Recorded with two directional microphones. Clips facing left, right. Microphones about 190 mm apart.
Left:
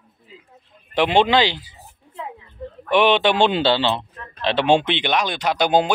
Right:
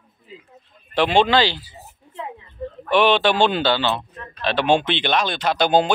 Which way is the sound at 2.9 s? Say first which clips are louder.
Even; 20° left (ahead or behind).